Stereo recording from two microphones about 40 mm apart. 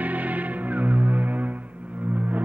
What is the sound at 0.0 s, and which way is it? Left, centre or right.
Music, right.